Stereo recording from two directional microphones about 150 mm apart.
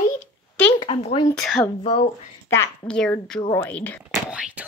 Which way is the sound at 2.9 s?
5° left (ahead or behind).